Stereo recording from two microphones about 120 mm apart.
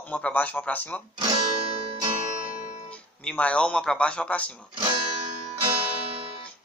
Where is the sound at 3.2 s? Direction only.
10° left (ahead or behind).